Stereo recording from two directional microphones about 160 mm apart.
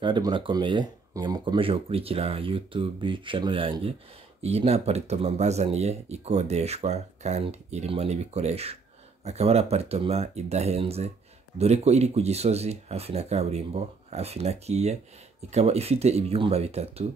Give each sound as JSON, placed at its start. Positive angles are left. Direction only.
{"t": 0.0, "sound": "speech", "side_deg": -30}